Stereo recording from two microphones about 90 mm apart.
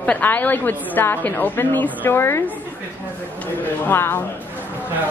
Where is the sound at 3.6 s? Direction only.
25° left (ahead or behind).